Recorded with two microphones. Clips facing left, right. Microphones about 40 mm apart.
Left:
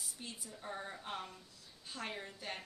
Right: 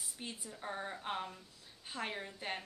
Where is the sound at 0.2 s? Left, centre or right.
Right.